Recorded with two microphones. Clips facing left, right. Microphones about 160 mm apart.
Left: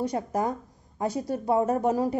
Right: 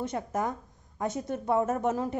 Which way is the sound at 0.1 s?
35° left (ahead or behind).